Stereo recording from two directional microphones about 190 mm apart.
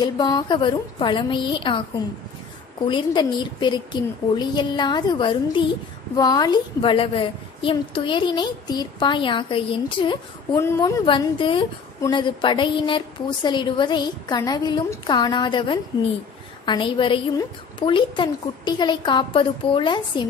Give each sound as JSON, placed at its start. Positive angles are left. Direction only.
{"t": 0.0, "sound": "a woman's voice", "side_deg": 20}
{"t": 2.9, "sound": "a woman's voice", "side_deg": 25}
{"t": 10.6, "sound": "a woman's voice", "side_deg": 15}
{"t": 11.1, "sound": "a woman's voice", "side_deg": 25}